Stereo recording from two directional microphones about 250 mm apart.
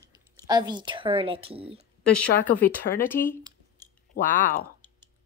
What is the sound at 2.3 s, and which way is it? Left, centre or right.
Speech, left.